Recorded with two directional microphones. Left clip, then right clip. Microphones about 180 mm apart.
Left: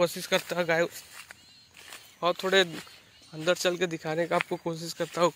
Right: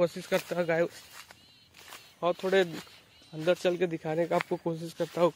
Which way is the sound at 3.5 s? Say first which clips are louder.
Left 1 dB; 20° right (ahead or behind).